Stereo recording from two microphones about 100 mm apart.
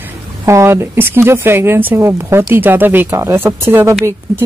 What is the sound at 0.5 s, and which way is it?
Speech, 30° right (ahead or behind).